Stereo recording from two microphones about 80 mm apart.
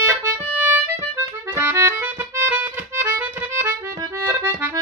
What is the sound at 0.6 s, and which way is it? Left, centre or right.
Harmonica, right.